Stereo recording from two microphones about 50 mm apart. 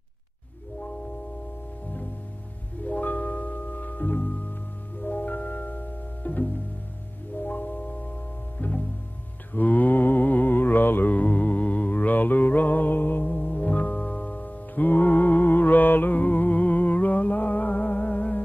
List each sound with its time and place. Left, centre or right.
2.8 s music: left
9.5 s mantra: left